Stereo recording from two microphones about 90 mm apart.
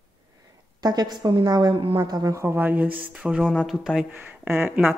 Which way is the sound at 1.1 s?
45° right (ahead or behind).